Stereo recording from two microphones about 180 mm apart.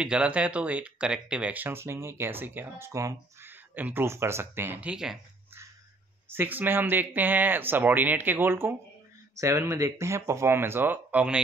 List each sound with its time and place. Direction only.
0.0 s speech: 5° right (ahead or behind)
6.3 s speech: 10° right (ahead or behind)